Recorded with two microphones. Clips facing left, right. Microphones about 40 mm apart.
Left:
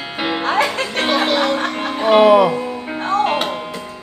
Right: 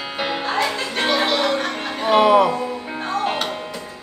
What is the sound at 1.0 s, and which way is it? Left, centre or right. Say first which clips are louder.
Music: left 2 dB; centre.